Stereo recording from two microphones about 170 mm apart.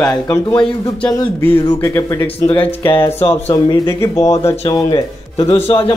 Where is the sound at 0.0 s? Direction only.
20° left (ahead or behind).